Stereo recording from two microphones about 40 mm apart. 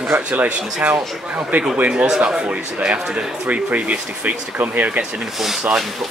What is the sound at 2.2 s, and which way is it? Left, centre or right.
Speech, right.